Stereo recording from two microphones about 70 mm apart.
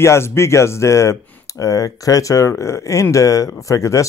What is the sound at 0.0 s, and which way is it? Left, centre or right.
Speech, left.